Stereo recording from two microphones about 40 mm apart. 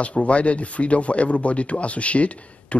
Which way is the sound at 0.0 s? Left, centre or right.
Left.